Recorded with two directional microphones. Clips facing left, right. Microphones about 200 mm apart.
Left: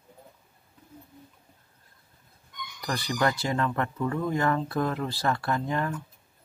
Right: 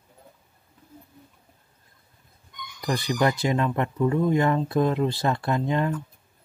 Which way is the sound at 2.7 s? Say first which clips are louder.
Right 4 dB; 20° right (ahead or behind).